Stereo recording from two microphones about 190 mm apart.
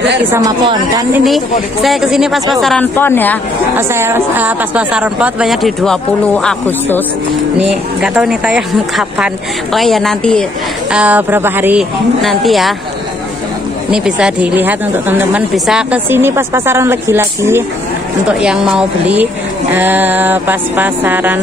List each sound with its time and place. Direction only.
0.3 s speech: 20° right (ahead or behind)
1.2 s speech: centre (ahead or behind)
3.7 s speech: 10° right (ahead or behind); by 7.0 s 5° left (ahead or behind)
7.6 s speech: 5° right (ahead or behind)
10.9 s a woman's voice: 5° right (ahead or behind)
12.2 s speech: centre (ahead or behind)
13.8 s a woman's voice: 5° right (ahead or behind)